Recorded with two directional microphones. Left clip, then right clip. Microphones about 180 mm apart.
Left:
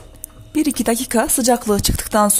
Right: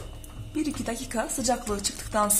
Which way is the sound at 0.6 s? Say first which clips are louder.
Left 12 dB; 60° left (ahead or behind).